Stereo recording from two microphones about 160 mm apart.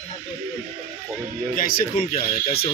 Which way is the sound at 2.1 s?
40° left (ahead or behind).